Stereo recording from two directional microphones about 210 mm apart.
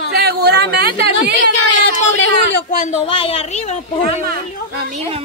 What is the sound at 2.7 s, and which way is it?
A woman's voice, 35° left (ahead or behind).